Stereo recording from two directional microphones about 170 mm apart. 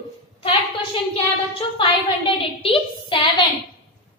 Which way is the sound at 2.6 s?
30° left (ahead or behind).